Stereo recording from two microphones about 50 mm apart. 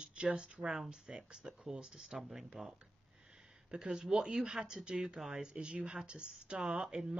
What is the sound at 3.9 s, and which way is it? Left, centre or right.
A woman's voice, centre.